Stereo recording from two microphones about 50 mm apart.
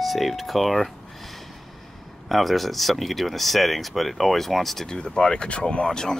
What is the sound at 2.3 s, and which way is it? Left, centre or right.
Speech, centre.